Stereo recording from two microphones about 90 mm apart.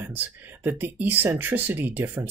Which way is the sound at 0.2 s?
20° right (ahead or behind).